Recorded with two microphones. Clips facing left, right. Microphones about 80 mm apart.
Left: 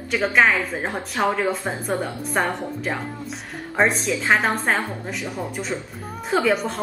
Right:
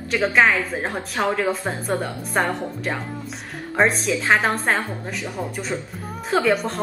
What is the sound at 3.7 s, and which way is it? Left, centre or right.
A woman's voice, centre.